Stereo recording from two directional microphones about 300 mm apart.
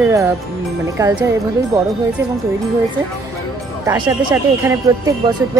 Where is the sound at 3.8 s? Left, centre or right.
Centre.